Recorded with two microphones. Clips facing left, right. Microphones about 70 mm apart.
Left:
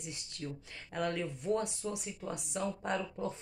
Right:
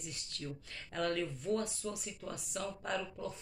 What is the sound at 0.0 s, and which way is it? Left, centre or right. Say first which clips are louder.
Speech: left 2 dB; left.